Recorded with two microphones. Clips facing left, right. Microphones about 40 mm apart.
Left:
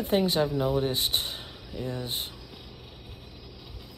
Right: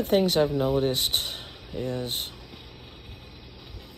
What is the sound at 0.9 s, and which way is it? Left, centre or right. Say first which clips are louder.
Speech: right 2 dB; right.